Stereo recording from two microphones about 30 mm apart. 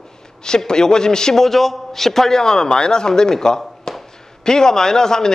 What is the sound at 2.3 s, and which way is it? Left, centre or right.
A man's voice, left.